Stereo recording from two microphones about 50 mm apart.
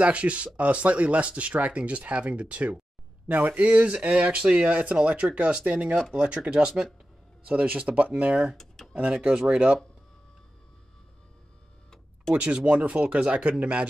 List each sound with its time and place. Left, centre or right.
0.0 s speech: right
8.5 s a sound: centre
8.9 s speech: right
12.4 s speech: right